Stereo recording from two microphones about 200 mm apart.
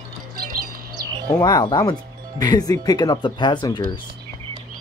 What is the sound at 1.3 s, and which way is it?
Speech, 20° left (ahead or behind).